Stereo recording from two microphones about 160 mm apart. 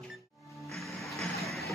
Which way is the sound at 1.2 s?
Centre (ahead or behind).